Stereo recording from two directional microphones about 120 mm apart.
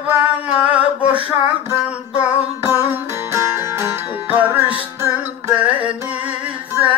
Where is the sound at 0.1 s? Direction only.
10° right (ahead or behind).